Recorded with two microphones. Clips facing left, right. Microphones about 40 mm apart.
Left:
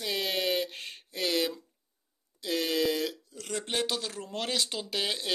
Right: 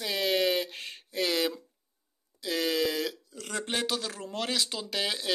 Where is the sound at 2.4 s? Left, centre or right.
Centre.